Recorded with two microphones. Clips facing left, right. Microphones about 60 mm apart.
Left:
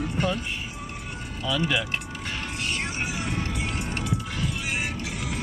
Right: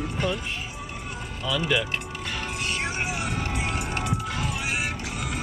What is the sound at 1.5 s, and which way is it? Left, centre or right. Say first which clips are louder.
Speech: right 1 dB; centre.